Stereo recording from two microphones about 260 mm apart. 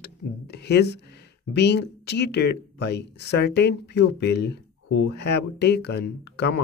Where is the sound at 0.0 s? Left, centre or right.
Left.